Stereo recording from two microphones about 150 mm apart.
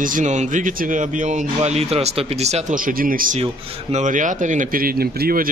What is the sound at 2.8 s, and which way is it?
Speech, 65° right (ahead or behind).